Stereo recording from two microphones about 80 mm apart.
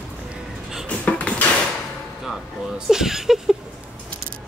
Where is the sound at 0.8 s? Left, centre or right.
Centre.